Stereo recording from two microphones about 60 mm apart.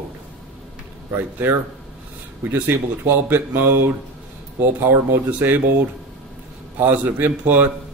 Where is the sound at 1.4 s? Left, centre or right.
Right.